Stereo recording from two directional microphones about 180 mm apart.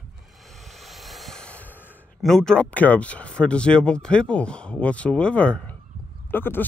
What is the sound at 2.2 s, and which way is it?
Speech, centre (ahead or behind).